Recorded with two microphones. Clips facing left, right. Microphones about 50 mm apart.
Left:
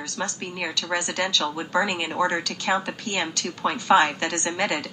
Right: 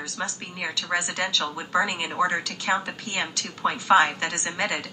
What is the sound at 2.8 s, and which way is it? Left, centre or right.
A woman's voice, left.